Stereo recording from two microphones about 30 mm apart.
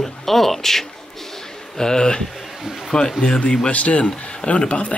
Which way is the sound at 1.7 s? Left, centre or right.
Left.